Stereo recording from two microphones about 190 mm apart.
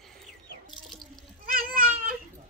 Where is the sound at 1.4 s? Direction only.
50° right (ahead or behind).